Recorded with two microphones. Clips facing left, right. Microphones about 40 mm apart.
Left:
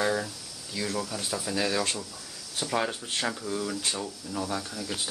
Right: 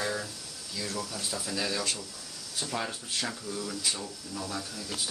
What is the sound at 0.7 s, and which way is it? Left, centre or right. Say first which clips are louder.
Speech: left 4 dB; left.